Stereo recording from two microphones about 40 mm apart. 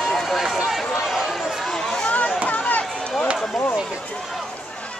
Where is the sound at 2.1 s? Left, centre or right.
Left.